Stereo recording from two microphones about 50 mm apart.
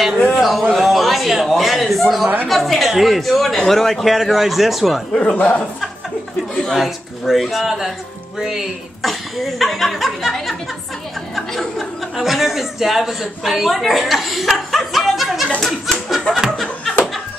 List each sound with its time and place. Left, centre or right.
0.3 s a sound: centre
2.4 s a man's voice: centre
5.1 s speech: left
6.5 s chuckle: centre
6.8 s a man's voice: centre
11.3 s chuckle: centre
12.2 s a man's voice: centre
15.6 s snicker: centre
16.3 s a man's voice: centre